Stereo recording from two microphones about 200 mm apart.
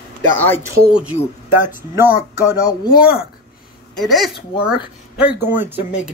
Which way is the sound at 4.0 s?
Centre (ahead or behind).